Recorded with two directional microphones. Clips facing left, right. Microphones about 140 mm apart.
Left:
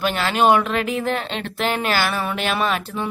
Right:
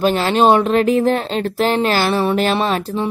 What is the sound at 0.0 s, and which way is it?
Speech, 30° right (ahead or behind).